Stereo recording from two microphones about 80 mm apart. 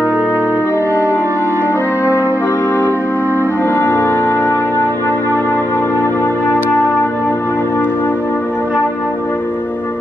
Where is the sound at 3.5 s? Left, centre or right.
Left.